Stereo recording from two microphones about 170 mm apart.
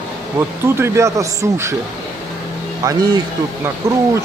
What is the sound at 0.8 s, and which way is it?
Speech, 15° right (ahead or behind).